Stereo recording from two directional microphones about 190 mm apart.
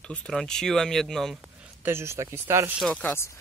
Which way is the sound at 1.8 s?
15° right (ahead or behind).